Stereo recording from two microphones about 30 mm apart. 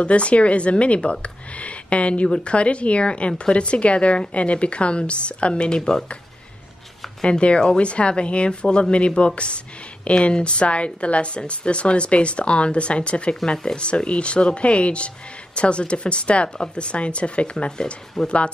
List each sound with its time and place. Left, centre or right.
0.0 s speech: left
7.2 s speech: left
17.6 s speech: left
18.2 s speech: left